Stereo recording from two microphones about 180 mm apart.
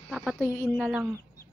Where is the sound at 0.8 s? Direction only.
5° right (ahead or behind).